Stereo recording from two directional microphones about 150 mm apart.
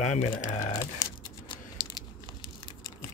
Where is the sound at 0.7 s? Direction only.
20° left (ahead or behind).